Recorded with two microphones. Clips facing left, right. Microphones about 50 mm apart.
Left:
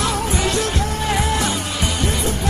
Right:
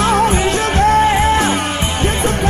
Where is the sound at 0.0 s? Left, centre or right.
Right.